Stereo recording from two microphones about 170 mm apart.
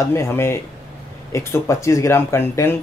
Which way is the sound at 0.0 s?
15° left (ahead or behind).